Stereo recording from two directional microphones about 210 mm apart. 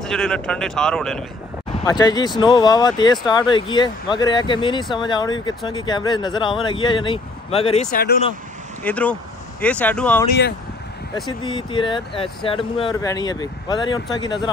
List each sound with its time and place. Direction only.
0.0 s speech: 5° left (ahead or behind)
1.9 s speech: 20° left (ahead or behind)
8.8 s speech: 5° left (ahead or behind)
11.2 s speech: 20° left (ahead or behind)